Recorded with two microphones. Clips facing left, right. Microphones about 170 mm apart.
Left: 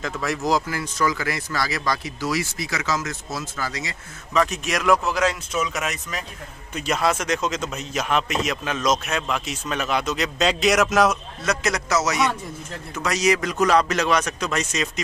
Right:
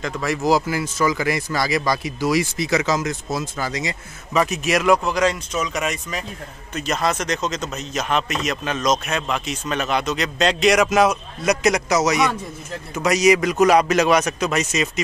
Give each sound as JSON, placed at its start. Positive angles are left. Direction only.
{"t": 0.0, "sound": "speech", "side_deg": 0}
{"t": 4.3, "sound": "a man's voice", "side_deg": -5}
{"t": 11.4, "sound": "speech", "side_deg": -15}